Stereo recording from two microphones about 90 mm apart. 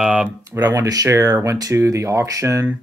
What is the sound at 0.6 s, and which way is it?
Speech, 40° right (ahead or behind).